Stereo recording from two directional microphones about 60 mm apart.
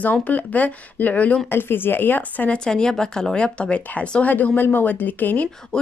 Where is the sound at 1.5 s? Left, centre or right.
Left.